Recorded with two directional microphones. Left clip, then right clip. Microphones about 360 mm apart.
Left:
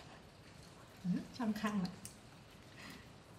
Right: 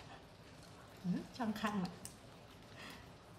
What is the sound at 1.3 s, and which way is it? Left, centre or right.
Speech, centre.